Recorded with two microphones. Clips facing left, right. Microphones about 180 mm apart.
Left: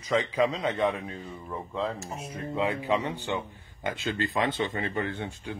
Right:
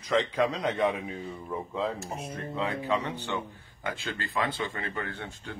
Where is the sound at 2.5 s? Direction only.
15° left (ahead or behind).